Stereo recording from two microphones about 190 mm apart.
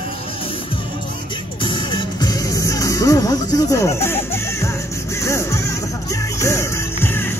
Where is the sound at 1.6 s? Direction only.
25° left (ahead or behind).